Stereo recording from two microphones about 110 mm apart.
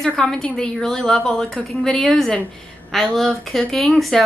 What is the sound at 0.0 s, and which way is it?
A woman's voice, 5° left (ahead or behind).